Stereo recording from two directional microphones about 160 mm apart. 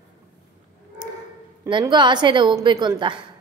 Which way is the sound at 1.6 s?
30° right (ahead or behind).